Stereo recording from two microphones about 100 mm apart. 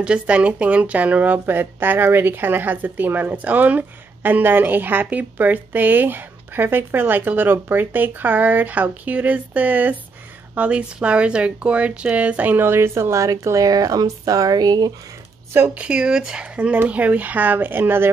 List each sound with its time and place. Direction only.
0.0 s speech: 10° right (ahead or behind); by 14.9 s 40° right (ahead or behind)
15.5 s speech: 20° right (ahead or behind)